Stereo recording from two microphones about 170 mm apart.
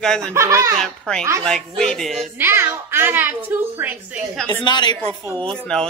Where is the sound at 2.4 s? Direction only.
15° right (ahead or behind).